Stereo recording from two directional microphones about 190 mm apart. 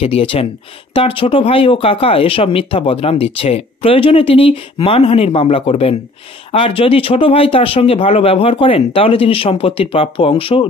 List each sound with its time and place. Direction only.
0.0 s speech: 30° left (ahead or behind)